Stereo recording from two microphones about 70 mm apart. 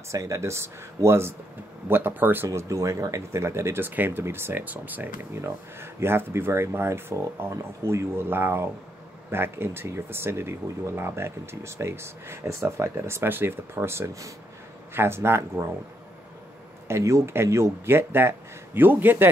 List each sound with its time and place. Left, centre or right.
0.1 s speech: right
2.5 s speech: right
5.3 s speech: right
16.8 s speech: right